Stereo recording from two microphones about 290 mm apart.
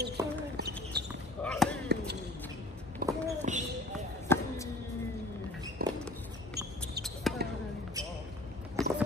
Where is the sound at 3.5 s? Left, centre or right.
Right.